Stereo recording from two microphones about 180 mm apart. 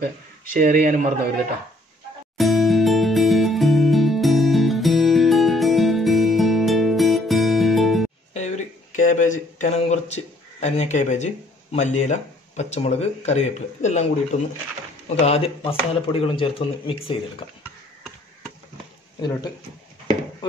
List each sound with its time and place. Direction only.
0.5 s speech: 50° right (ahead or behind)
2.3 s music: centre (ahead or behind)
8.3 s speech: 40° left (ahead or behind)